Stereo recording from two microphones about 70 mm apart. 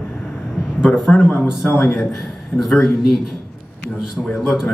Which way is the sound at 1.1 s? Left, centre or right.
Left.